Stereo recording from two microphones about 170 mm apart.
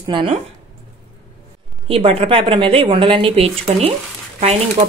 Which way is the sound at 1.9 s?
35° right (ahead or behind).